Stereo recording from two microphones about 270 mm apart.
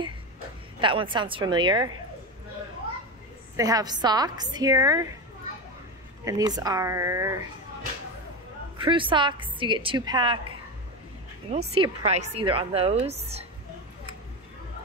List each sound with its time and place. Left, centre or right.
0.7 s a woman's voice: centre
3.5 s a woman's voice: centre
6.2 s a woman's voice: centre
8.7 s a woman's voice: centre
11.5 s speech: right